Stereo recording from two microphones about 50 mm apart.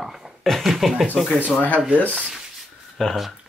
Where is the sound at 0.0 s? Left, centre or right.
Centre.